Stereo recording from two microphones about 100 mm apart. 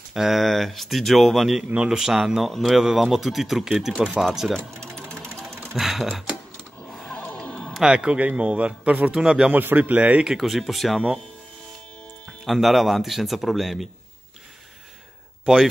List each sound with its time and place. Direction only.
0.1 s speech: 5° right (ahead or behind)
5.5 s music: 25° right (ahead or behind)
5.8 s speech: 5° right (ahead or behind)
7.1 s music: 15° left (ahead or behind)
7.7 s speech: 5° right (ahead or behind)
9.6 s speech: 20° right (ahead or behind); by 11.0 s centre (ahead or behind)
12.3 s speech: centre (ahead or behind)
15.4 s speech: 5° right (ahead or behind)